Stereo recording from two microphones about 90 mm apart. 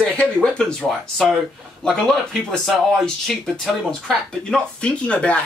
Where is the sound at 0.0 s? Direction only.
10° left (ahead or behind).